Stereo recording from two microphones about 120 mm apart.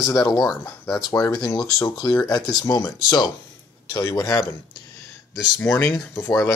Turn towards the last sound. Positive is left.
turn(degrees=25)  # may be behind; listen again after turning